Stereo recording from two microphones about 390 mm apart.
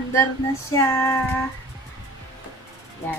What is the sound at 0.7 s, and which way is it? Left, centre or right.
Female singing, centre.